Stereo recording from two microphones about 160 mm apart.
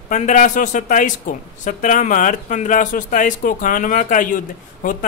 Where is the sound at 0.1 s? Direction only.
50° left (ahead or behind).